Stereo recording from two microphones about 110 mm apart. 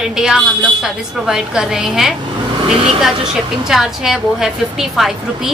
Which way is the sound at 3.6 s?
5° right (ahead or behind).